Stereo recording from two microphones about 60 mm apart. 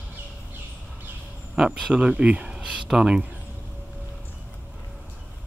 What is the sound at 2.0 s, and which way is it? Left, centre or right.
Speech, centre.